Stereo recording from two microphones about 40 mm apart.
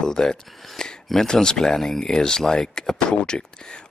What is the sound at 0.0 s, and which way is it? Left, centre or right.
Speech, centre.